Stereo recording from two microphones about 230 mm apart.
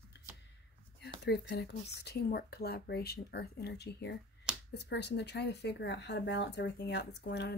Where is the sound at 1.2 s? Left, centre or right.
Left.